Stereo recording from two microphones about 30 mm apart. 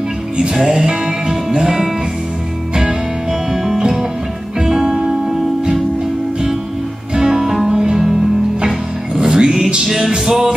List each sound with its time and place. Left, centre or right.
0.7 s music: right
4.6 s music: centre
7.2 s music: centre
9.1 s music: right
9.8 s music: centre
10.1 s music: right